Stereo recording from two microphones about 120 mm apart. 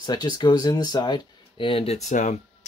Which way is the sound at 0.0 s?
35° left (ahead or behind).